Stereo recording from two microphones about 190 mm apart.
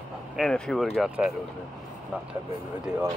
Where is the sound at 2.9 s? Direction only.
5° right (ahead or behind).